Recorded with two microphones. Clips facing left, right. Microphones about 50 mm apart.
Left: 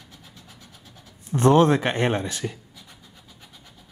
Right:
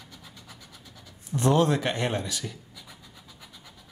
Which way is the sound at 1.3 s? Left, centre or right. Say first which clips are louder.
Left 6 dB; left.